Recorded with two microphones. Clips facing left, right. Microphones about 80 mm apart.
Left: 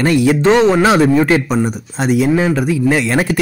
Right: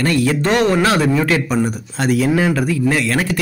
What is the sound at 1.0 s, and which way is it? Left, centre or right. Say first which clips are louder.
Speech: left 4 dB; left.